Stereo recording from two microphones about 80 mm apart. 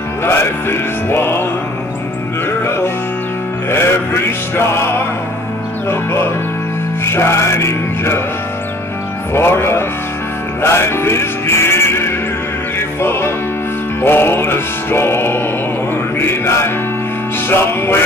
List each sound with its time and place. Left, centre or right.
0.2 s music: left
2.6 s music: left
9.3 s music: left